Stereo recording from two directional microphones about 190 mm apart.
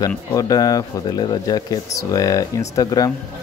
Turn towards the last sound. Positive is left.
turn(degrees=20)  # may be behind; listen again after turning